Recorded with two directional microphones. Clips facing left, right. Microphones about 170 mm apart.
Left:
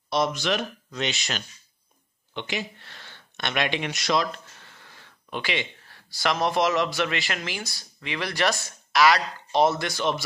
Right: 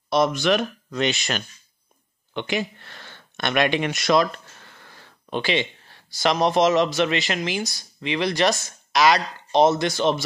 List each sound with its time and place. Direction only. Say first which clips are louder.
0.1 s speech: right 5 dB; 55° right (ahead or behind)
5.0 s speech: right 6 dB; 30° right (ahead or behind)